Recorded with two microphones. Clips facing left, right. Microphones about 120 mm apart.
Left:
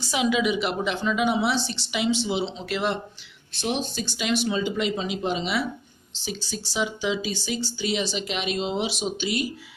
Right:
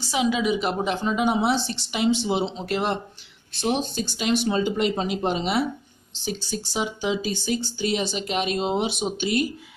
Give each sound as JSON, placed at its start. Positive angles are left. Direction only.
{"t": 0.1, "sound": "a woman's voice", "side_deg": -30}